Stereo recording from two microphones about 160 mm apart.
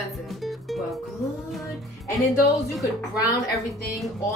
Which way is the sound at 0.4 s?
Centre (ahead or behind).